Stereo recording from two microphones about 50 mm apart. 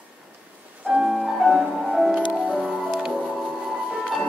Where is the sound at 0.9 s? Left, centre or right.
Centre.